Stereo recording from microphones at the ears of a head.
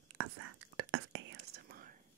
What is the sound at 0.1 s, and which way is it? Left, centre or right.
Whispering, right.